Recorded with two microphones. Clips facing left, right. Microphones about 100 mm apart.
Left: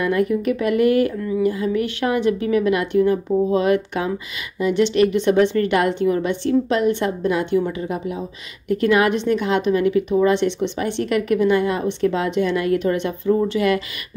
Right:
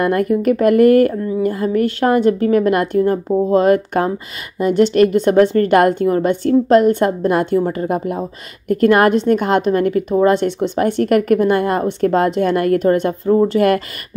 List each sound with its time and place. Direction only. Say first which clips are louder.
0.0 s a woman's voice: right 4 dB; 50° right (ahead or behind)